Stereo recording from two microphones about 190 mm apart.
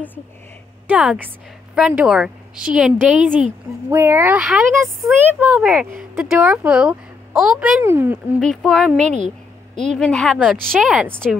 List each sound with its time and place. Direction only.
0.8 s a woman's voice: 5° right (ahead or behind)
8.4 s a woman's voice: centre (ahead or behind)